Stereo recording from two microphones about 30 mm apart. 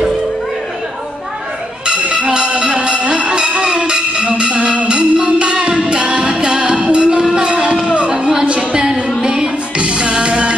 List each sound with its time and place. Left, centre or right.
2.2 s music: right